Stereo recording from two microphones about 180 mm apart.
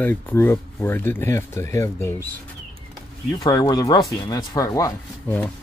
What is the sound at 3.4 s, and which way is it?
Speech, 20° left (ahead or behind).